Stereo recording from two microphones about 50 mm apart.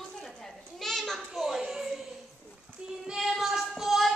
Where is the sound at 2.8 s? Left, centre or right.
Centre.